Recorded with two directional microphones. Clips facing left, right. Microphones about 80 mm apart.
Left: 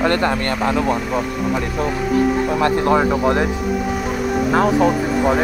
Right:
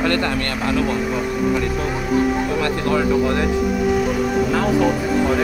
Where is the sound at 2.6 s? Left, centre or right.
Left.